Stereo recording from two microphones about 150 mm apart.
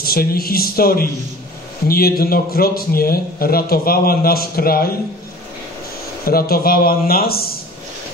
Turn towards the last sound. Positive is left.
turn(degrees=90)